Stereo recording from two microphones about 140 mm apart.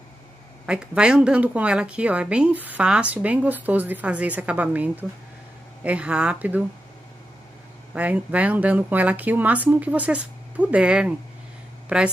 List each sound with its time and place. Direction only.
0.7 s a woman's voice: 5° right (ahead or behind)
7.9 s a woman's voice: 10° right (ahead or behind)